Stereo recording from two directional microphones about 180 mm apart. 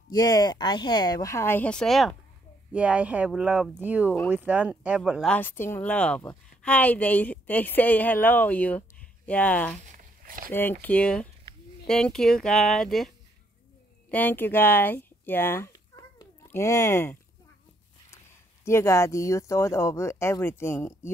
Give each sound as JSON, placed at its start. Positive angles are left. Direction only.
{"t": 0.1, "sound": "speech", "side_deg": 20}
{"t": 5.3, "sound": "speech", "side_deg": 10}
{"t": 9.8, "sound": "a sound", "side_deg": -50}
{"t": 10.5, "sound": "speech", "side_deg": 10}
{"t": 14.1, "sound": "speech", "side_deg": 10}